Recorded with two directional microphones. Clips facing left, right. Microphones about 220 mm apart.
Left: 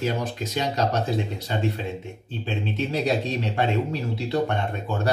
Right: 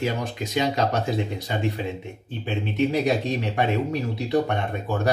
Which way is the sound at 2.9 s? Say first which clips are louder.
Right 2 dB; 15° right (ahead or behind).